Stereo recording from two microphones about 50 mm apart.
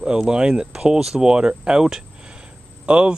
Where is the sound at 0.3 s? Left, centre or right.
Centre.